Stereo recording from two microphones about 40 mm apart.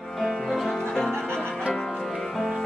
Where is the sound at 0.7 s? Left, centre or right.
Centre.